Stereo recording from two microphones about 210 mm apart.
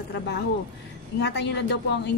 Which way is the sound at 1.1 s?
55° left (ahead or behind).